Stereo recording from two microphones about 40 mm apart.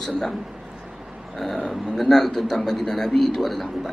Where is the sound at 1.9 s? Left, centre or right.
Centre.